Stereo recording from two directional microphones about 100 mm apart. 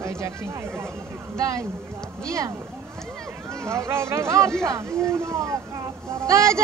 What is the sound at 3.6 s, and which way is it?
Speech, 30° right (ahead or behind).